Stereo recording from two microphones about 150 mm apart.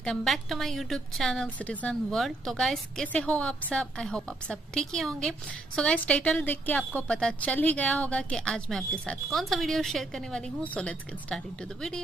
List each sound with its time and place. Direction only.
0.0 s a woman's voice: 5° left (ahead or behind)